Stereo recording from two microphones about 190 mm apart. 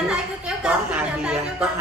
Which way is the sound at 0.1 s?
5° right (ahead or behind).